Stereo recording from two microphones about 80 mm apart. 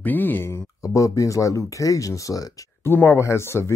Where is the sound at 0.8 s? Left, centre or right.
Left.